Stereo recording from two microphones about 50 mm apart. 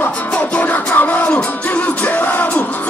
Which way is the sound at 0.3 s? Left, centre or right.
Left.